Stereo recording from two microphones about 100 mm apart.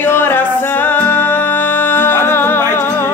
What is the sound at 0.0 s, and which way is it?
Music, 20° left (ahead or behind).